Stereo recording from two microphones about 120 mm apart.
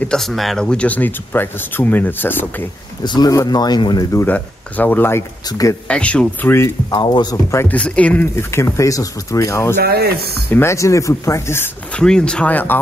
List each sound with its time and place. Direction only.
0.0 s speech: 5° left (ahead or behind)
3.0 s speech: 35° left (ahead or behind)
4.2 s speech: 15° left (ahead or behind)
5.5 s speech: 30° left (ahead or behind)
5.9 s speech: 10° left (ahead or behind)
6.9 s speech: 40° left (ahead or behind)
7.5 s speech: 15° left (ahead or behind)
11.9 s speech: 5° left (ahead or behind)